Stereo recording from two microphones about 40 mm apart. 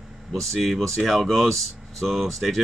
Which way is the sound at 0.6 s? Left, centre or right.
Centre.